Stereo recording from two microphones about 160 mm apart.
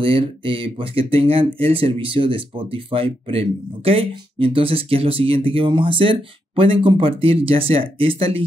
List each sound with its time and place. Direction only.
0.0 s speech: 30° right (ahead or behind)